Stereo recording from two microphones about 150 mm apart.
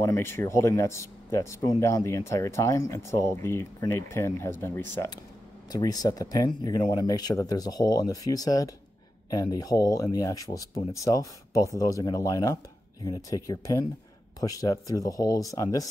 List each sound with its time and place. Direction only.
0.0 s speech: 15° left (ahead or behind)